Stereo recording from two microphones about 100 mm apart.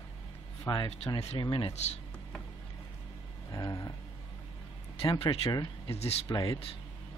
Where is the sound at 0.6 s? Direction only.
50° left (ahead or behind).